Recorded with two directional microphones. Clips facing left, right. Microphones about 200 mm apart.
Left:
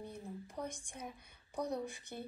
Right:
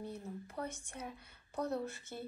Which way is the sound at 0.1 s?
10° left (ahead or behind).